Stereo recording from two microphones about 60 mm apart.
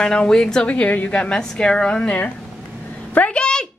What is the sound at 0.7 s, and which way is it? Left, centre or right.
A woman's voice, left.